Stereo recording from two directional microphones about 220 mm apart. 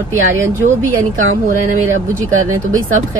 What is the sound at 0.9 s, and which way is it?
Speech, 35° right (ahead or behind).